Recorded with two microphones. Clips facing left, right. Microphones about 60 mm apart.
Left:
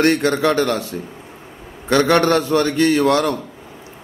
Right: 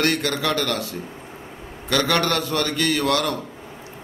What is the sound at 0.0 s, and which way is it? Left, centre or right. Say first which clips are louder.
A man's voice: left 6 dB; left.